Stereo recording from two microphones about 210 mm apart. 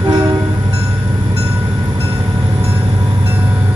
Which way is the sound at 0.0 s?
15° right (ahead or behind).